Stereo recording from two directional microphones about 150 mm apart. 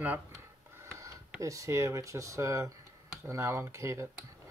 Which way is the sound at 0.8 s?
20° right (ahead or behind).